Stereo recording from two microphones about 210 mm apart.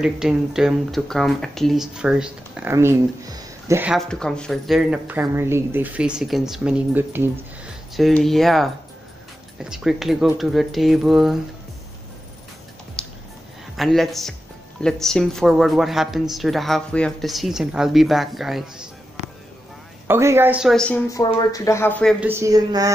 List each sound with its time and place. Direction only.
0.0 s speech: centre (ahead or behind)
3.9 s speech: centre (ahead or behind)
13.7 s speech: centre (ahead or behind)
20.1 s a woman's voice: 10° right (ahead or behind); by 21.0 s 5° left (ahead or behind)
21.1 s speech: 20° left (ahead or behind)
22.2 s a woman's voice: 10° right (ahead or behind)